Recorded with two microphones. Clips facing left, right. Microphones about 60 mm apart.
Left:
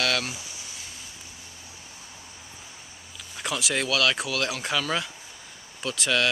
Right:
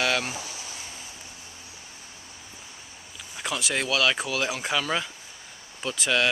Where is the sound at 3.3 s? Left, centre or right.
Centre.